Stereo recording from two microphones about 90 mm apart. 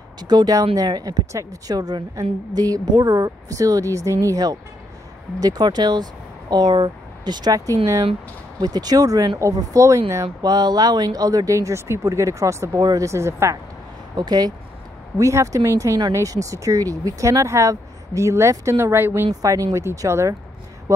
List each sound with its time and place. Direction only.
0.2 s speech: 50° right (ahead or behind); by 10.2 s 35° right (ahead or behind)
10.4 s speech: 50° right (ahead or behind); by 13.6 s 30° right (ahead or behind)
14.1 s speech: 50° right (ahead or behind)
15.1 s speech: 35° right (ahead or behind)
19.4 s speech: 40° right (ahead or behind)